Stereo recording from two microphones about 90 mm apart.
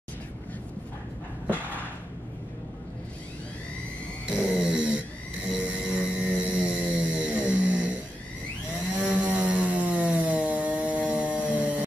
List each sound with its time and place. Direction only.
4.5 s snoring: 10° right (ahead or behind)
6.9 s music: 15° right (ahead or behind)
8.9 s chainsaw: 15° right (ahead or behind)